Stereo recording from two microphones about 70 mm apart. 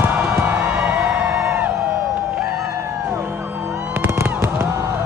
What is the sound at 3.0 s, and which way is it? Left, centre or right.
Music, right.